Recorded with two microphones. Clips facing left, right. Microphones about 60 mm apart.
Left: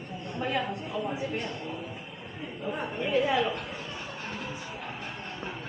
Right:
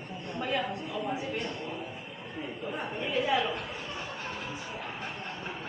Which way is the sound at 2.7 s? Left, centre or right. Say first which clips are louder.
Left 4 dB; centre.